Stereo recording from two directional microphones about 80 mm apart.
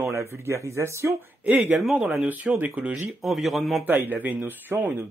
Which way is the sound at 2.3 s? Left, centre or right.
Right.